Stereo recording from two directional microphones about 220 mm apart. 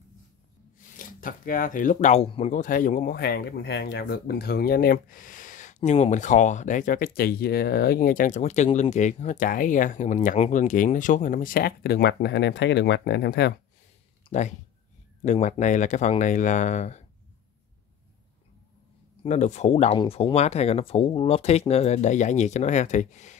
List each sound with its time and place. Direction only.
0.7 s speech: 35° left (ahead or behind)
14.3 s speech: 25° left (ahead or behind)
19.2 s speech: 30° left (ahead or behind)